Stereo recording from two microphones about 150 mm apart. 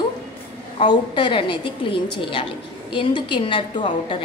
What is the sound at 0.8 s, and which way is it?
A woman's voice, 35° left (ahead or behind).